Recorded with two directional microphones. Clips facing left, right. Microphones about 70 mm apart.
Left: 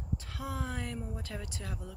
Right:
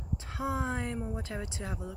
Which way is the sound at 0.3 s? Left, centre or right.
Right.